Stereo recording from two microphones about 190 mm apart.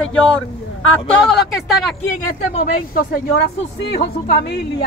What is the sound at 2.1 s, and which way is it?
A woman's voice, 45° left (ahead or behind).